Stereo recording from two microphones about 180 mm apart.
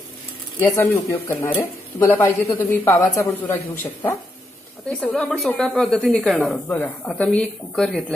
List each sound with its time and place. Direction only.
0.6 s speech: 15° left (ahead or behind)
4.8 s speech: 5° left (ahead or behind)